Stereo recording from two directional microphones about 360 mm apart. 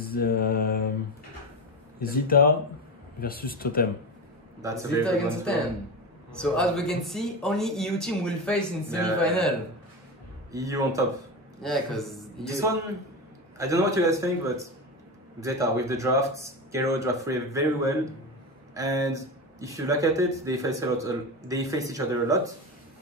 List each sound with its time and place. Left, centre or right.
0.0 s mantra: left
2.0 s speech: left
4.6 s a man's voice: centre
5.0 s speech: centre
10.5 s speech: centre